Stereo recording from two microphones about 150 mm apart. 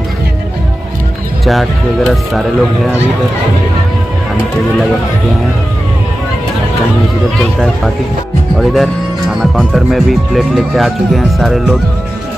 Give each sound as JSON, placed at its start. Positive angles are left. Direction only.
{"t": 1.4, "sound": "speech", "side_deg": 0}
{"t": 8.5, "sound": "speech", "side_deg": 0}